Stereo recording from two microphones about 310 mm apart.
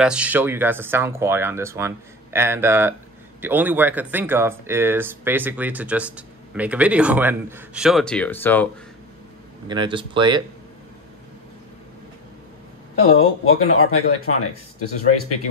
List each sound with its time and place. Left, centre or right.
0.0 s speech: centre
9.7 s speech: centre
13.0 s speech: left